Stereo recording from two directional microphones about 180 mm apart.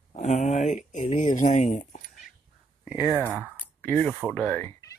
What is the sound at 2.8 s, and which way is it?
Speech, 5° right (ahead or behind).